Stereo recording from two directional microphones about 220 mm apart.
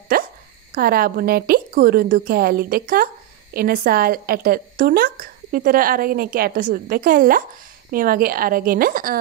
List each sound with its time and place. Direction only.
0.1 s hiccup: 45° right (ahead or behind)
0.7 s a woman's voice: 40° right (ahead or behind)